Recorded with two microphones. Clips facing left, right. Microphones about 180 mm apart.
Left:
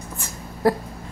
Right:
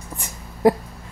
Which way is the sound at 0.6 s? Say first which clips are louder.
Right 3 dB; 15° right (ahead or behind).